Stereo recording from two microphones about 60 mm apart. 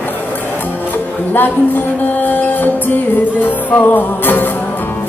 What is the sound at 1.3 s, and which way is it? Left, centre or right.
Music, left.